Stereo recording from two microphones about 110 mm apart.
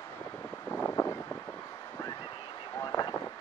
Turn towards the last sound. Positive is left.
turn(degrees=40)  # may be behind; listen again after turning